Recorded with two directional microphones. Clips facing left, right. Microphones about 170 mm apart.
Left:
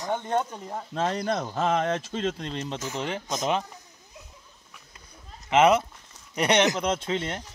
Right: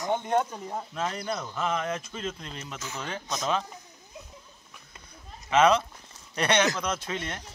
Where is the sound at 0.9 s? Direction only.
35° left (ahead or behind).